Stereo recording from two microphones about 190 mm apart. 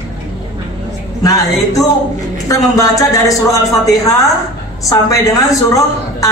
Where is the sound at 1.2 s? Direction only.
20° left (ahead or behind).